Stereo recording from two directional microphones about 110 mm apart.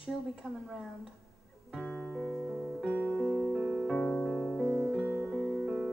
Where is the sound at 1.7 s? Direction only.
Centre (ahead or behind).